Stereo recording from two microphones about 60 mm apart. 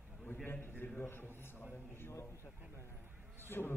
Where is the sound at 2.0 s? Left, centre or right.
Left.